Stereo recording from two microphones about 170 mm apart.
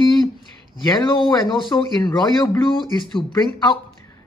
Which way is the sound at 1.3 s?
25° left (ahead or behind).